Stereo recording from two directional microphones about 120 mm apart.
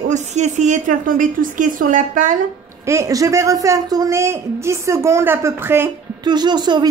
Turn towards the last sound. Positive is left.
turn(degrees=-35)  # may be behind; listen again after turning